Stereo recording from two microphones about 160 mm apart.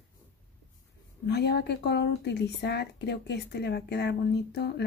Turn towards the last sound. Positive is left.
turn(degrees=90)